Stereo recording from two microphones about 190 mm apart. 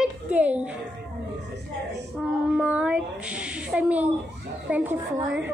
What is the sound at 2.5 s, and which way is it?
A woman's voice, 5° right (ahead or behind).